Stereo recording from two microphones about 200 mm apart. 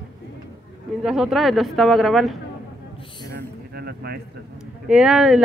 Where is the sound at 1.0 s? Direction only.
5° right (ahead or behind).